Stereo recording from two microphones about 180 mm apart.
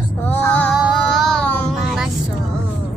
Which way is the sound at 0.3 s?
10° left (ahead or behind).